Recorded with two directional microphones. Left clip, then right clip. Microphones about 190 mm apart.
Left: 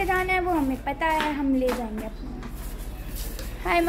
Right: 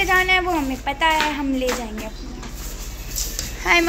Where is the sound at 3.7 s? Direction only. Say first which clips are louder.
Right 6 dB; 5° left (ahead or behind).